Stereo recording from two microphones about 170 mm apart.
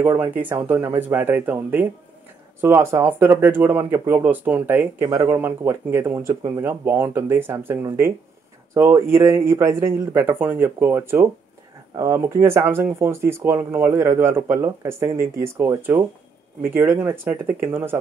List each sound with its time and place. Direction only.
0.0 s speech: 10° right (ahead or behind)